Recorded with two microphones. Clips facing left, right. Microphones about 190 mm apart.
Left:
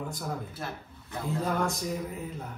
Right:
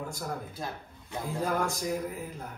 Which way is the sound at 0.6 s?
15° right (ahead or behind).